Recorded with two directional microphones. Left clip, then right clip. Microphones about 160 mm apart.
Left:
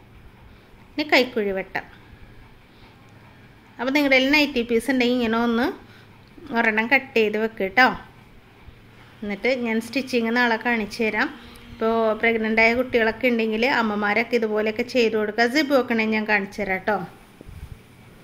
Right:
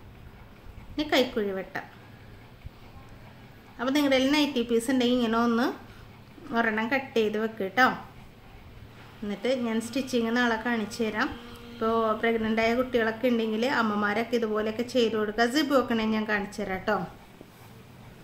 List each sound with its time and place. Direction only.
0.9 s a woman's voice: 20° left (ahead or behind)
3.7 s a woman's voice: 20° left (ahead or behind)
9.2 s a woman's voice: 20° left (ahead or behind)